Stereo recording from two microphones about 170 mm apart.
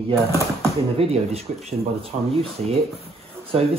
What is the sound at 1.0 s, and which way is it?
Speech, 35° right (ahead or behind).